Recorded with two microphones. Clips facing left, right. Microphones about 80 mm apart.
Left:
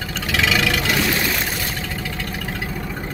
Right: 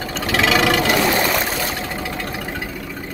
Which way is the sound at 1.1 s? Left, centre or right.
Right.